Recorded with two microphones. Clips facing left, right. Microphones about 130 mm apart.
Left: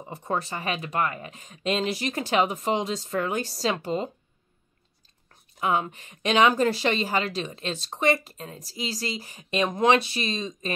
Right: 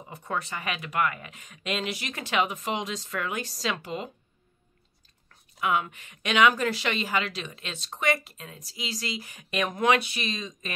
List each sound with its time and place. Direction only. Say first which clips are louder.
0.1 s a woman's voice: left 3 dB; 35° left (ahead or behind)
5.3 s a woman's voice: left 2 dB; 30° left (ahead or behind)